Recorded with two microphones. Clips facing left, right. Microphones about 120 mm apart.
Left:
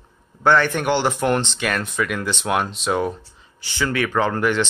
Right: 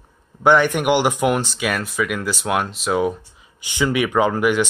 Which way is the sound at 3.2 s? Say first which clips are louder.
Even; 15° right (ahead or behind).